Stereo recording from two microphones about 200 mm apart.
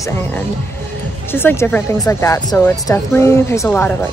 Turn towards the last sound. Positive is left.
turn(degrees=10)  # may be behind; listen again after turning